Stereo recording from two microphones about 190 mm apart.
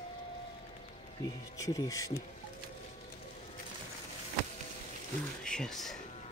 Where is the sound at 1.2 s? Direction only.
20° left (ahead or behind).